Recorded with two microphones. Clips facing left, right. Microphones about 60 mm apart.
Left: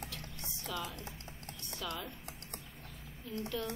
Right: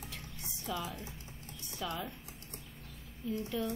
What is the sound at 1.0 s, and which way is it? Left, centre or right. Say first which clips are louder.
Typing: even; left.